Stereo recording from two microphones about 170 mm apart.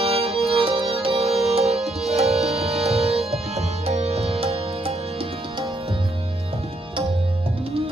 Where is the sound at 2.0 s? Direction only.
40° right (ahead or behind).